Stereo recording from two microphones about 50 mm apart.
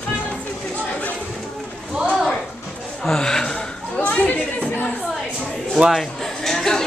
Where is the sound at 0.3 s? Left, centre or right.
Left.